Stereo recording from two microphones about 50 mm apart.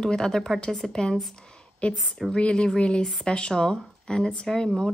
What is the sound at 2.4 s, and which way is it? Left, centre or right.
Speech, centre.